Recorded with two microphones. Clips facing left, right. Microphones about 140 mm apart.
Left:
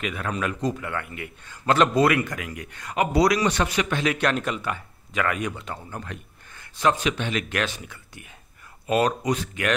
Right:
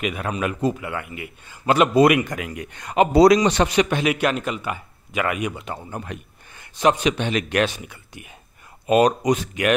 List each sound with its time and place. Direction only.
0.0 s a man's voice: 15° right (ahead or behind)